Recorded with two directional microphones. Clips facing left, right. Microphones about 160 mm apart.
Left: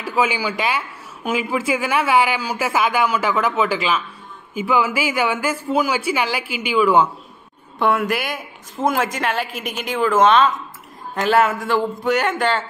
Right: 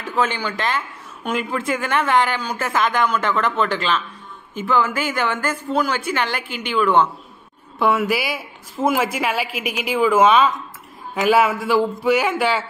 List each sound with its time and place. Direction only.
0.0 s speech: 10° left (ahead or behind)
7.8 s a woman's voice: 5° right (ahead or behind)